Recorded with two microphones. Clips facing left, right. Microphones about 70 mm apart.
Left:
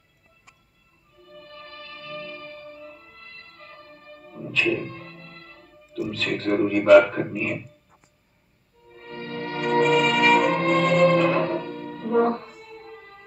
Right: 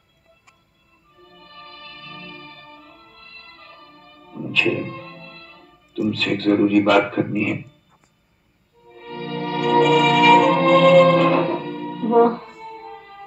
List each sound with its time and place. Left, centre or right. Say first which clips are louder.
1.3 s music: left 1 dB; right
6.1 s a man's voice: right 4 dB; right
8.9 s music: right 5 dB; right